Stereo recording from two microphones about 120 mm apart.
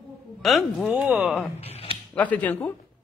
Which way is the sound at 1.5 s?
60° left (ahead or behind).